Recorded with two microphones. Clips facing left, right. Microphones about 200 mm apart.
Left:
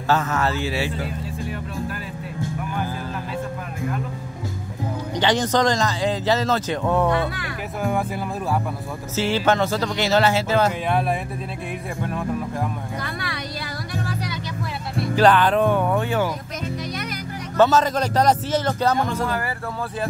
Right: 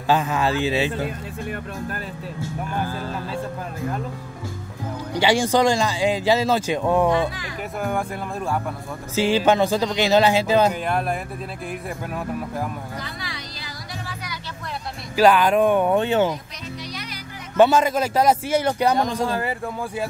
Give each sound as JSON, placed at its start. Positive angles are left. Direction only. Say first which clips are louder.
{"t": 0.1, "sound": "a man's voice", "louder": "right 1 dB", "side_deg": -15}
{"t": 1.0, "sound": "speech", "louder": "even", "side_deg": -55}
{"t": 5.1, "sound": "a man's voice", "louder": "right 2 dB", "side_deg": -10}
{"t": 7.8, "sound": "speech", "louder": "left 2 dB", "side_deg": 5}
{"t": 9.1, "sound": "a man's voice", "louder": "right 2 dB", "side_deg": -15}
{"t": 10.7, "sound": "speech", "louder": "left 1 dB", "side_deg": 0}
{"t": 13.0, "sound": "speech", "louder": "left 4 dB", "side_deg": 60}
{"t": 15.1, "sound": "a man's voice", "louder": "right 1 dB", "side_deg": -10}
{"t": 17.6, "sound": "a man's voice", "louder": "right 1 dB", "side_deg": -15}
{"t": 19.2, "sound": "a man's voice", "louder": "right 1 dB", "side_deg": -25}